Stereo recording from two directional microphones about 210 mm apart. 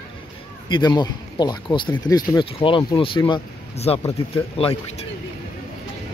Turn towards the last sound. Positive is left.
turn(degrees=30)  # may be behind; listen again after turning